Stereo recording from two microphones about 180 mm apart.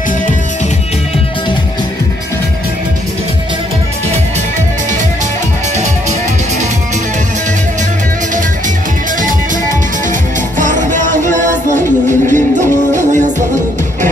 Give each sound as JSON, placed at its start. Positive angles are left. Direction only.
{"t": 10.6, "sound": "music", "side_deg": -45}